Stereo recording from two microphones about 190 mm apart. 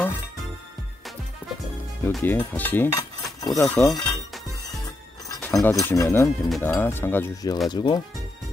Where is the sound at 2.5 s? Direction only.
10° left (ahead or behind).